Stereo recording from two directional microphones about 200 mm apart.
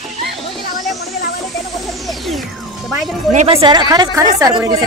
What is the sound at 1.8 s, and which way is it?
Music, centre (ahead or behind).